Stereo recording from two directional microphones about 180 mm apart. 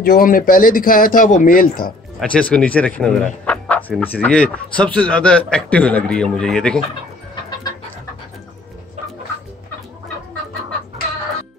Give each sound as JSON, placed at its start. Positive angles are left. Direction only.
{"t": 0.0, "sound": "speech", "side_deg": 55}
{"t": 2.1, "sound": "speech", "side_deg": 5}